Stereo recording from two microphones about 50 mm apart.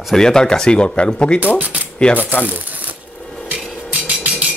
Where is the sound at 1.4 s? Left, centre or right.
Right.